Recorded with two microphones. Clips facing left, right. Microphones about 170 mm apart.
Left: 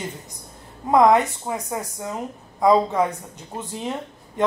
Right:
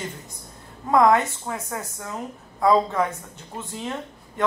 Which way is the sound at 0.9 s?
20° left (ahead or behind).